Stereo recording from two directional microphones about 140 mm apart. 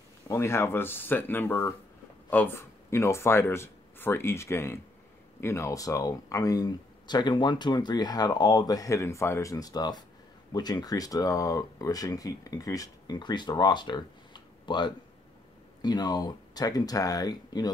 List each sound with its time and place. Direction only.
0.3 s speech: 20° left (ahead or behind)